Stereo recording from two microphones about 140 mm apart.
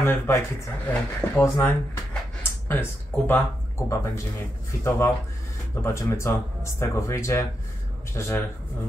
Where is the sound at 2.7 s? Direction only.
15° left (ahead or behind).